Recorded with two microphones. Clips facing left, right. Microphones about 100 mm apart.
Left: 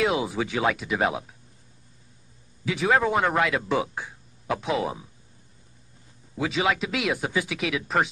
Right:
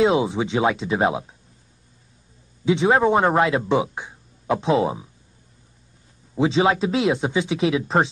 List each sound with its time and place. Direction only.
0.0 s speech: 25° right (ahead or behind)
2.6 s speech: 25° right (ahead or behind)
6.3 s speech: 30° right (ahead or behind)